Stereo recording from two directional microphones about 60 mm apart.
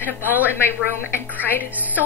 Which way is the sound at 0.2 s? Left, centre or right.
Right.